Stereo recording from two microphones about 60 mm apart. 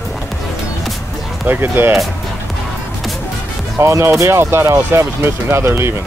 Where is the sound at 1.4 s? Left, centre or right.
Right.